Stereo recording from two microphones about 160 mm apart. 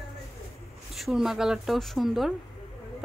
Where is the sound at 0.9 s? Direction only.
Centre (ahead or behind).